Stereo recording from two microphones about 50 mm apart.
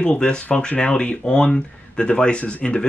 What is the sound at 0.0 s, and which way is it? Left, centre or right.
Speech, left.